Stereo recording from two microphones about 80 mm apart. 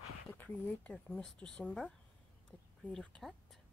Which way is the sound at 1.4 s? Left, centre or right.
Centre.